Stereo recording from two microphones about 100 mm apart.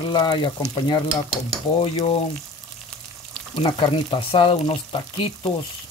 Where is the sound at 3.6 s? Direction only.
55° left (ahead or behind).